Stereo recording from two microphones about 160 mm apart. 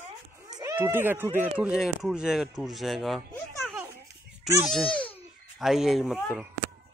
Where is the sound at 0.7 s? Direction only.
15° right (ahead or behind).